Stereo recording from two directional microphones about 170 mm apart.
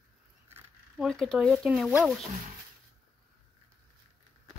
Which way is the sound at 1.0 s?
5° left (ahead or behind).